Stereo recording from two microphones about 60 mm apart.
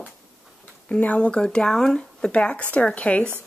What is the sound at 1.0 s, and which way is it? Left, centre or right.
Speech, left.